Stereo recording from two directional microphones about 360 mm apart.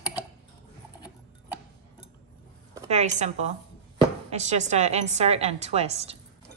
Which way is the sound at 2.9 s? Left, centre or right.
Centre.